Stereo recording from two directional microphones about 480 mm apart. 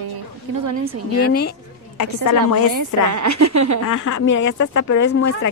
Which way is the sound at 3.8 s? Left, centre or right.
Left.